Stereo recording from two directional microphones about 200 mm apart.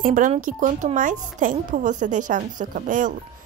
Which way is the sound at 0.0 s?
40° right (ahead or behind).